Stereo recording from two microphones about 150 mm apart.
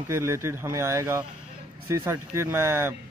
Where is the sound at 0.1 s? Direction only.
20° right (ahead or behind).